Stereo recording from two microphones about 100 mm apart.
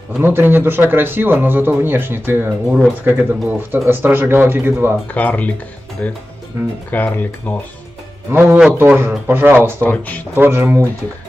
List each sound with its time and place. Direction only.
0.2 s speech: 20° right (ahead or behind)
5.0 s speech: 15° left (ahead or behind)
6.5 s speech: 25° right (ahead or behind)
6.9 s speech: 15° left (ahead or behind)
8.3 s speech: 25° right (ahead or behind)
9.8 s speech: 15° left (ahead or behind)
10.3 s speech: 20° right (ahead or behind)